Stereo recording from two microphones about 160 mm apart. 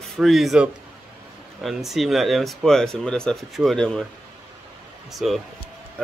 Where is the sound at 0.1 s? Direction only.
Centre (ahead or behind).